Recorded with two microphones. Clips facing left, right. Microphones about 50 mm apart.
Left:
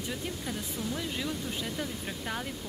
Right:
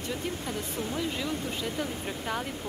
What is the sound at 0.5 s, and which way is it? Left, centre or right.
Speech, right.